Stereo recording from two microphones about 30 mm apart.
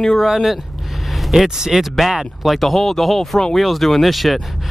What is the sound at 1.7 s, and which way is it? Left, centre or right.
Speech, centre.